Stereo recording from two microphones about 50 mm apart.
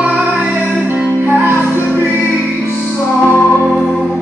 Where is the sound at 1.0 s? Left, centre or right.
Right.